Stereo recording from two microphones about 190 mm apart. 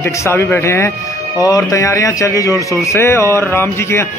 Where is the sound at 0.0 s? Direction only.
15° left (ahead or behind).